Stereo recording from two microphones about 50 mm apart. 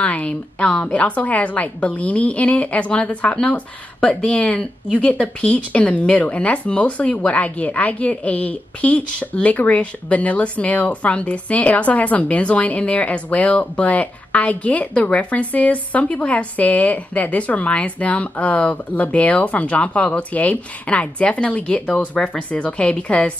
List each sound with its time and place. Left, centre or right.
0.0 s speech: left